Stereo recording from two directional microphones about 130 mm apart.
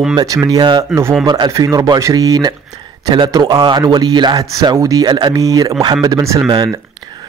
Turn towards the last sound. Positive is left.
turn(degrees=-25)  # may be behind; listen again after turning